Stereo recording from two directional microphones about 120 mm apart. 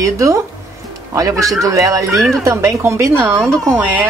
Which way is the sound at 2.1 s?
Centre (ahead or behind).